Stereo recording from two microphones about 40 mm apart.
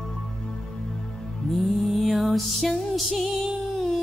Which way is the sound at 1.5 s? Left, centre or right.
Centre.